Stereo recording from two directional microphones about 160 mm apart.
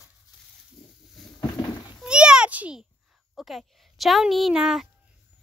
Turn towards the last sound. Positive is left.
turn(degrees=-5)  # may be behind; listen again after turning